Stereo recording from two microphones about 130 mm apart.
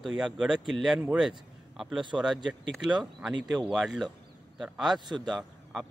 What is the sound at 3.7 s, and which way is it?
Speech, centre (ahead or behind).